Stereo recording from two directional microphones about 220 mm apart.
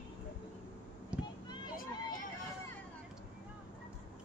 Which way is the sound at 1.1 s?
5° right (ahead or behind).